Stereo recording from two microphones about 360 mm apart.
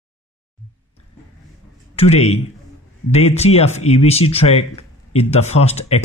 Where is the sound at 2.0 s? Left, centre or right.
Centre.